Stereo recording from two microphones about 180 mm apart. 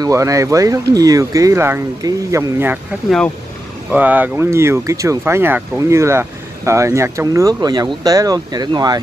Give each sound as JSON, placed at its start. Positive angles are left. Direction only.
{"t": 0.0, "sound": "speech", "side_deg": -15}
{"t": 3.9, "sound": "speech", "side_deg": -10}